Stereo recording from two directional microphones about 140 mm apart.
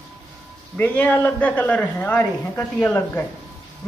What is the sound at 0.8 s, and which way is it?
A man's voice, 15° left (ahead or behind).